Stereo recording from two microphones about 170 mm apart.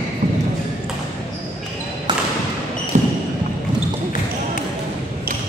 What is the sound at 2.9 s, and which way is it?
Basketball bounce, 45° right (ahead or behind).